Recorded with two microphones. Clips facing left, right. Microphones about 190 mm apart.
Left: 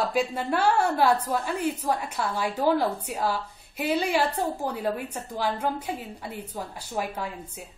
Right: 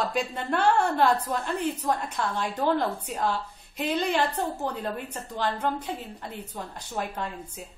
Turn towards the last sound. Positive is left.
turn(degrees=10)  # may be behind; listen again after turning